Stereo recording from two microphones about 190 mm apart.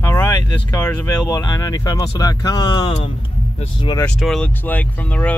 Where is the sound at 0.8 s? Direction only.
10° left (ahead or behind).